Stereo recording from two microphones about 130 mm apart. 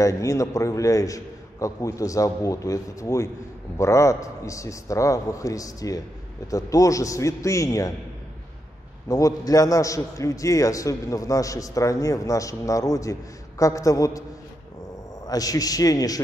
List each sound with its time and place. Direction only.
0.0 s a man's voice: 25° left (ahead or behind)
9.1 s a man's voice: 25° left (ahead or behind)
15.2 s a man's voice: 30° left (ahead or behind)